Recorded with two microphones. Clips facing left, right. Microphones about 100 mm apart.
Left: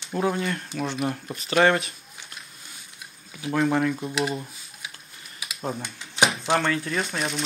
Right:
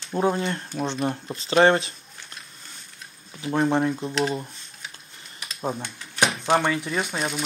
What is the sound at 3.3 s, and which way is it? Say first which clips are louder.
Speech: right 1 dB; 25° right (ahead or behind).